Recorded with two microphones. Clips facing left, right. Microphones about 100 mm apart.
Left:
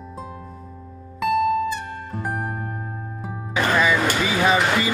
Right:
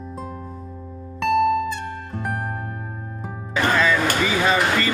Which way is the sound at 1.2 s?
Centre (ahead or behind).